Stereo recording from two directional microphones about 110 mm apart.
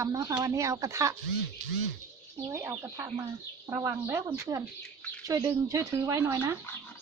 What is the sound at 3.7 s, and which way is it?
Speech, 30° right (ahead or behind).